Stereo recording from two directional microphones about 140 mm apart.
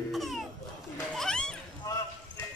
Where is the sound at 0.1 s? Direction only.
Centre (ahead or behind).